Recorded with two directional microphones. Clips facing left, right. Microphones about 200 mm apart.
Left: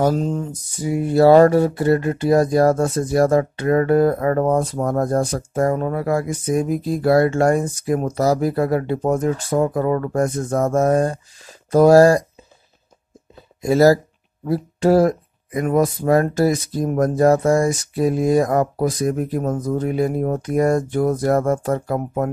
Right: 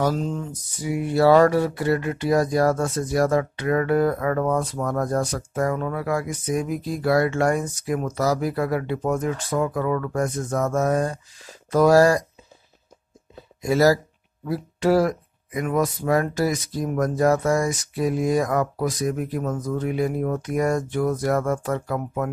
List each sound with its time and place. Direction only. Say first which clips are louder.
0.1 s speech: left 5 dB; 40° left (ahead or behind)
1.5 s speech: left 5 dB; 45° left (ahead or behind)
13.6 s speech: left 5 dB; 30° left (ahead or behind)